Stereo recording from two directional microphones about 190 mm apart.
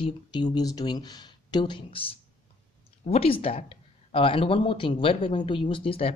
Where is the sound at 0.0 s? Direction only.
25° left (ahead or behind).